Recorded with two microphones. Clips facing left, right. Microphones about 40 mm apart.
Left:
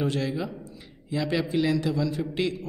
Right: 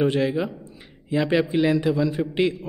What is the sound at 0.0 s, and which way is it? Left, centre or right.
A man's voice, right.